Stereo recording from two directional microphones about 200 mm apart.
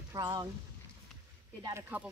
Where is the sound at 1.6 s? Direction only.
15° right (ahead or behind).